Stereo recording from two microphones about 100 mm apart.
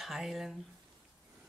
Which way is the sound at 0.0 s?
5° right (ahead or behind).